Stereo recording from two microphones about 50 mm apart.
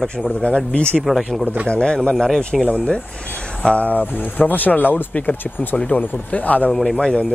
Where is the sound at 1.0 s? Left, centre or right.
Centre.